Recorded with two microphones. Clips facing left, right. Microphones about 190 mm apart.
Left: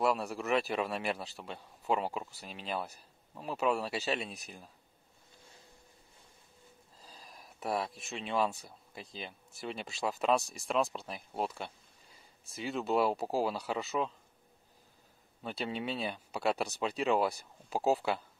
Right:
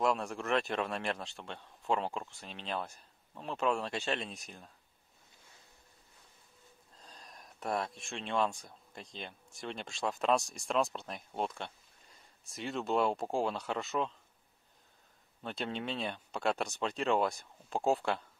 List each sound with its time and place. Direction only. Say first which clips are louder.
0.0 s a man's voice: left 1 dB; 5° left (ahead or behind)
7.0 s speech: even; 5° left (ahead or behind)
15.4 s a man's voice: left 1 dB; 5° left (ahead or behind)